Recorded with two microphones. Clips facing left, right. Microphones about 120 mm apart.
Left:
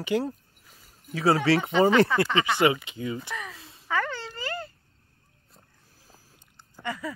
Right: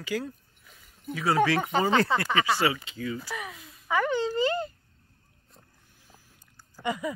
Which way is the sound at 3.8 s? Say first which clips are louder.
Right 4 dB; 15° right (ahead or behind).